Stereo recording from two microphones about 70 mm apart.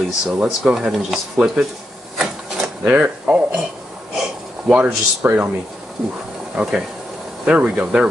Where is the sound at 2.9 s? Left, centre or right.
Right.